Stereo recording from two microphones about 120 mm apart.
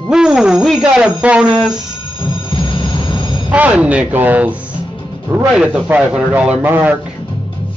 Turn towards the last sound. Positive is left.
turn(degrees=-15)  # may be behind; listen again after turning